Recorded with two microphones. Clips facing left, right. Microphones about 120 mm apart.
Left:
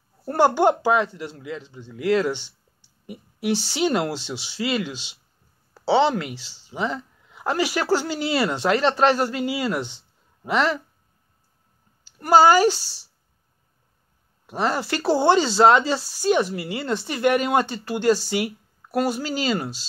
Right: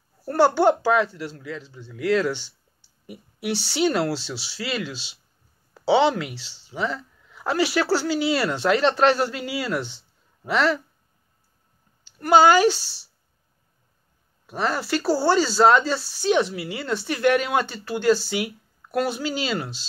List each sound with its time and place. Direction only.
0.2 s speech: 20° left (ahead or behind)
3.3 s a woman's voice: 45° left (ahead or behind)
3.8 s speech: 15° left (ahead or behind)
5.9 s speech: 10° right (ahead or behind)
6.3 s speech: 15° left (ahead or behind)
9.9 s a sound: 15° left (ahead or behind)
12.2 s speech: 15° left (ahead or behind)
14.4 s speech: 15° left (ahead or behind)